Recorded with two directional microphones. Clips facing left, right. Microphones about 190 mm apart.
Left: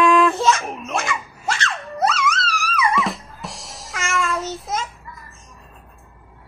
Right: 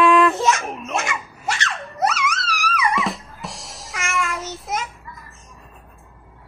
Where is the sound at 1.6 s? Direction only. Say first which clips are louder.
Left 1 dB; 20° right (ahead or behind).